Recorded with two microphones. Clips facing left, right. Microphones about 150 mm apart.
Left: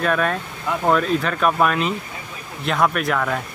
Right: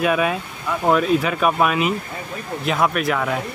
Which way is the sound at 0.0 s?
10° right (ahead or behind).